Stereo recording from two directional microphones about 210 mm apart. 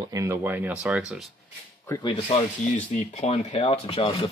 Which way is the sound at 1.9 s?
20° left (ahead or behind).